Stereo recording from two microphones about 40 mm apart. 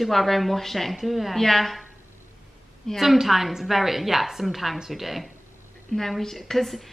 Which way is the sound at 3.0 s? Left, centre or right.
Centre.